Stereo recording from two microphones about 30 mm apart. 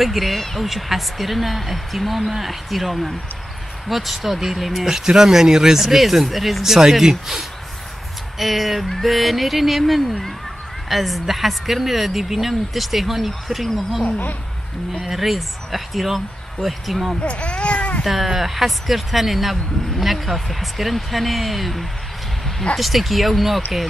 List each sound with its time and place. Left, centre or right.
0.0 s speech: centre
0.6 s speech: centre
6.6 s speech: centre
14.0 s a woman's voice: left
15.0 s speech: centre
17.2 s baby cry: left
18.0 s speech: centre